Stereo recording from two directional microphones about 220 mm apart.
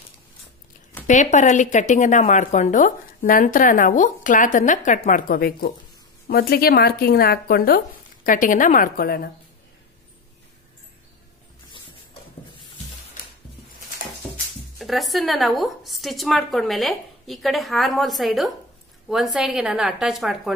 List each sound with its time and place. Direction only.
1.0 s speech: 35° left (ahead or behind)
14.8 s a woman's voice: centre (ahead or behind)